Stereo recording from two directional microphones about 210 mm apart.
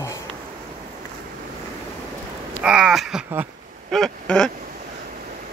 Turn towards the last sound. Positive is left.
turn(degrees=0)  # may be behind; listen again after turning